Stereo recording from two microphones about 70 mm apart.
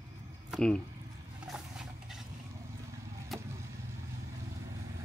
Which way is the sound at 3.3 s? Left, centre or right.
Centre.